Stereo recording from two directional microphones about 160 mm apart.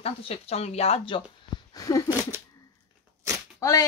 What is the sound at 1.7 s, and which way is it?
Speech, 20° left (ahead or behind).